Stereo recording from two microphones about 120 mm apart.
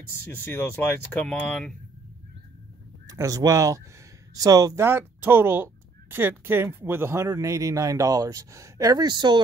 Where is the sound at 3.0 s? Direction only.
30° right (ahead or behind).